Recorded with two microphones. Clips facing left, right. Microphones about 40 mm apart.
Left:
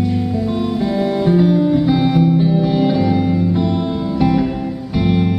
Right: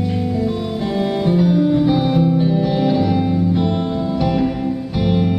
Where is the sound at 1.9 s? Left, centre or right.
Left.